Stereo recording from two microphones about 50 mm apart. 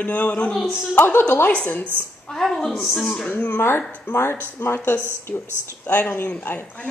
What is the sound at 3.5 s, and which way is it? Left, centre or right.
Speech, left.